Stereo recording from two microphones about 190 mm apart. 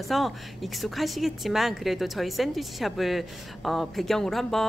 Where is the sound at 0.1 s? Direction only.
Centre (ahead or behind).